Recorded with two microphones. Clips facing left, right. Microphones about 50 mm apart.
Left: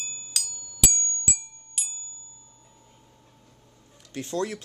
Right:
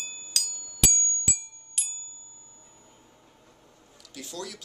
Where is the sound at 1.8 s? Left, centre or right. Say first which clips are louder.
Left 1 dB; centre.